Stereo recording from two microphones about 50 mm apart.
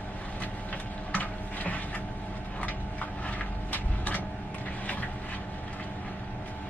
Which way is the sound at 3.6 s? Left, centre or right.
Left.